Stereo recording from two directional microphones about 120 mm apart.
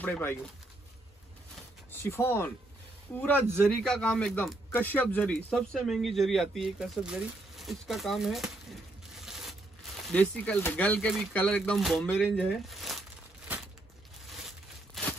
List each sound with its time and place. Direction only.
0.0 s speech: 15° left (ahead or behind)
1.9 s speech: 20° left (ahead or behind)
3.6 s speech: 5° left (ahead or behind)
4.7 s speech: 15° left (ahead or behind); by 8.5 s centre (ahead or behind)
9.2 s crushing: centre (ahead or behind)
10.1 s speech: 10° left (ahead or behind)
15.0 s a sound: centre (ahead or behind)